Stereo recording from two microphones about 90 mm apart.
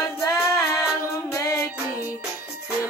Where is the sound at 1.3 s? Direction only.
35° left (ahead or behind).